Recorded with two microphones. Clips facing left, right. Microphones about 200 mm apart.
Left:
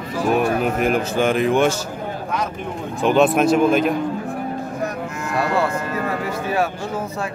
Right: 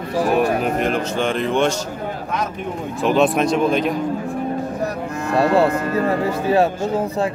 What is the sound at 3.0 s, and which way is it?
Speech, centre (ahead or behind).